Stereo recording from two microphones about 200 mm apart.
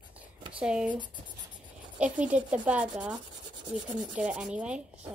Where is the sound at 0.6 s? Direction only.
5° right (ahead or behind).